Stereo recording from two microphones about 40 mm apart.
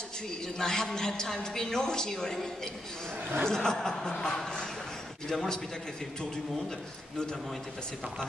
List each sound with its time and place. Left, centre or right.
0.6 s a woman's voice: centre
3.4 s a woman's voice: centre